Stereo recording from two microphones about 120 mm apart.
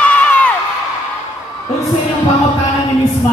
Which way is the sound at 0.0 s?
10° left (ahead or behind).